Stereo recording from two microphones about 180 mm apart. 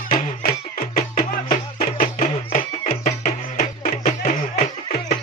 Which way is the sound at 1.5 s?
35° left (ahead or behind).